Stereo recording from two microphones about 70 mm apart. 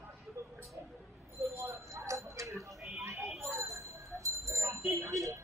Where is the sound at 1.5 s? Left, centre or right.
Right.